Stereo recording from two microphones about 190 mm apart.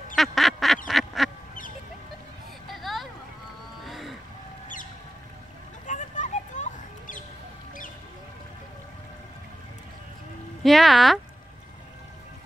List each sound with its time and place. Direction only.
0.1 s duck: centre (ahead or behind)
0.8 s quack: centre (ahead or behind)
2.7 s a sound: centre (ahead or behind)
3.8 s vehicle: centre (ahead or behind)
5.9 s a sound: 40° left (ahead or behind)
10.6 s speech: centre (ahead or behind)